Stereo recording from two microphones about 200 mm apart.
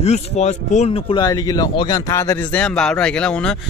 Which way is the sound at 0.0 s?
35° left (ahead or behind).